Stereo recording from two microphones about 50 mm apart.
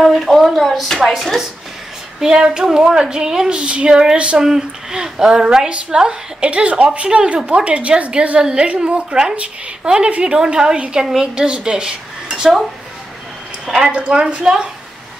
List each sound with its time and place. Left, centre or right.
0.0 s speech: centre
2.1 s child singing: centre
2.5 s a woman's voice: centre
13.7 s a woman's voice: centre
13.9 s a woman's voice: right
14.4 s a woman's voice: centre